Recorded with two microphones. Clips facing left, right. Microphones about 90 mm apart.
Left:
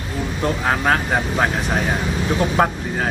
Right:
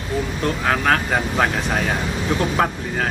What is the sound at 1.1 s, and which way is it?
Speech, 5° left (ahead or behind).